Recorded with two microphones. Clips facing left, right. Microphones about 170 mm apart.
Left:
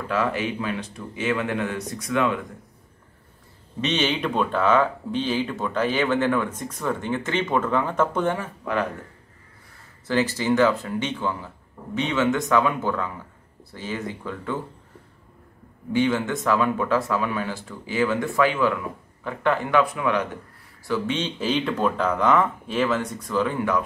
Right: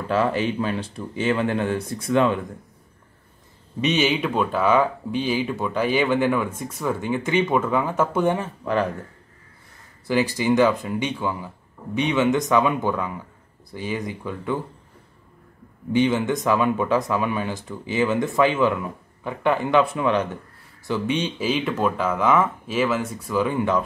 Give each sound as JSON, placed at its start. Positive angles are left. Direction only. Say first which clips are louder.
{"t": 0.1, "sound": "speech", "louder": "right 3 dB", "side_deg": -30}
{"t": 3.8, "sound": "speech", "louder": "right 3 dB", "side_deg": -10}
{"t": 8.4, "sound": "speech", "louder": "right 3 dB", "side_deg": -30}
{"t": 10.0, "sound": "speech", "louder": "right 2 dB", "side_deg": -10}
{"t": 15.9, "sound": "speech", "louder": "right 2 dB", "side_deg": -20}
{"t": 20.8, "sound": "speech", "louder": "right 1 dB", "side_deg": -15}